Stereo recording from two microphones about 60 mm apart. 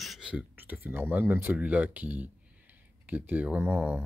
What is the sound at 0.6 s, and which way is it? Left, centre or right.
Speech, right.